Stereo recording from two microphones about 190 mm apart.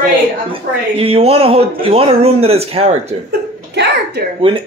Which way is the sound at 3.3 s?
60° right (ahead or behind).